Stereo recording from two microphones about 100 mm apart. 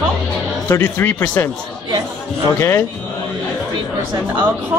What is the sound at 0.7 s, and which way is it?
Speech, 20° left (ahead or behind).